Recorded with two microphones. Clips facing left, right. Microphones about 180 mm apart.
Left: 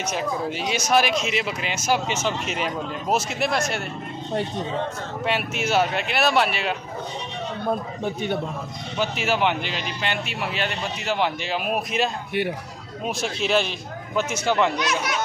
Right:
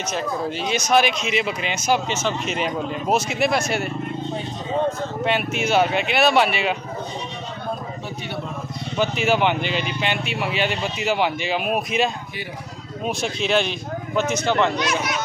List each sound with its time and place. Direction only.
0.0 s speech: 10° left (ahead or behind)
5.2 s speech: centre (ahead or behind)
8.0 s a man's voice: 50° left (ahead or behind)
8.9 s speech: centre (ahead or behind)